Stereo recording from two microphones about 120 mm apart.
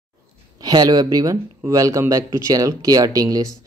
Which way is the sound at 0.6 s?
30° right (ahead or behind).